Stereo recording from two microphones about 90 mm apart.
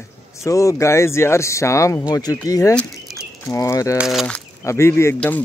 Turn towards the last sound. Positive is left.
turn(degrees=30)  # may be behind; listen again after turning